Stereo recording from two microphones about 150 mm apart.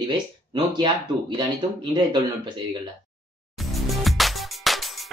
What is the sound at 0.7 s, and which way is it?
Speech, 30° right (ahead or behind).